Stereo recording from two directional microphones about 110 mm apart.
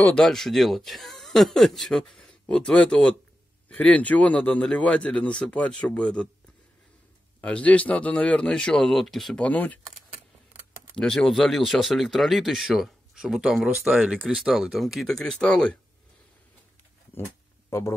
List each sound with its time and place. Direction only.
0.0 s a man's voice: 5° left (ahead or behind)
7.4 s a man's voice: 10° left (ahead or behind)
11.0 s speech: 5° left (ahead or behind)
17.6 s speech: 25° left (ahead or behind)